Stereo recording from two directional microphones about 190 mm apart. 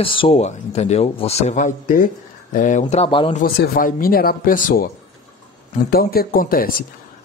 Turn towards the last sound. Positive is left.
turn(degrees=50)  # may be behind; listen again after turning